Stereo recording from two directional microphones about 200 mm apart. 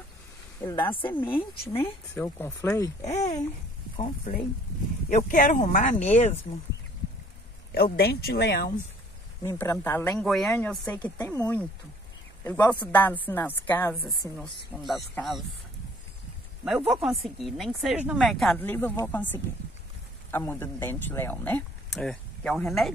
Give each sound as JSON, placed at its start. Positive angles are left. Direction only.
{"t": 0.6, "sound": "a woman's voice", "side_deg": 25}
{"t": 1.8, "sound": "speech", "side_deg": 10}
{"t": 5.1, "sound": "speech", "side_deg": 40}
{"t": 7.7, "sound": "speech", "side_deg": 50}
{"t": 9.4, "sound": "speech", "side_deg": 15}
{"t": 10.2, "sound": "speech", "side_deg": 0}
{"t": 16.6, "sound": "speech", "side_deg": -5}